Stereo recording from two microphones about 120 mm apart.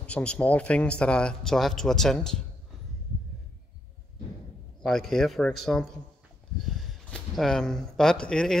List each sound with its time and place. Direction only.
0.0 s speech: 10° left (ahead or behind)
4.8 s speech: centre (ahead or behind)